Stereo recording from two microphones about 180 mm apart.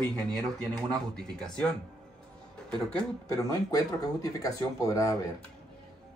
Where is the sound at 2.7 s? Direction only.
5° left (ahead or behind).